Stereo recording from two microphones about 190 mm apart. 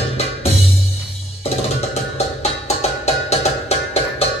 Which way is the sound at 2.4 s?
35° left (ahead or behind).